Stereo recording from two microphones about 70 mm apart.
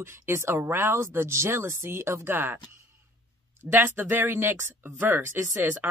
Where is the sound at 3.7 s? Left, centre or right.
Right.